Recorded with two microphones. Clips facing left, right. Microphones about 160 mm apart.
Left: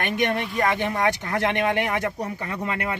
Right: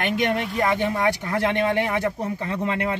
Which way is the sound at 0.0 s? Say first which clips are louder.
Right 1 dB; 20° right (ahead or behind).